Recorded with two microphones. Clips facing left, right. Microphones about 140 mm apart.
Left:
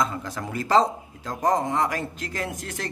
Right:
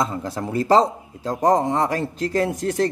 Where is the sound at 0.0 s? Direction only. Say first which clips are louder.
Right 3 dB; 30° right (ahead or behind).